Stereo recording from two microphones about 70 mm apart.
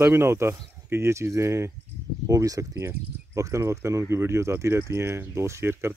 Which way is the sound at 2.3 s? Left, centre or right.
Right.